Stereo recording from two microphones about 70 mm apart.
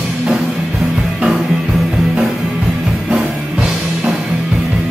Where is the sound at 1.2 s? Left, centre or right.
Centre.